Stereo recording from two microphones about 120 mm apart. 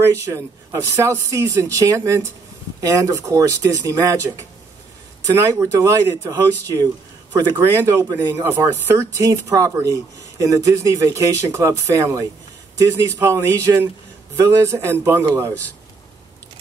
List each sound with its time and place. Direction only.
0.2 s speech: 25° right (ahead or behind)
8.5 s speech: 15° right (ahead or behind)
9.2 s speech: 30° right (ahead or behind)